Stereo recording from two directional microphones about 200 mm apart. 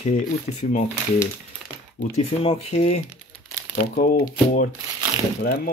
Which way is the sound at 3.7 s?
45° left (ahead or behind).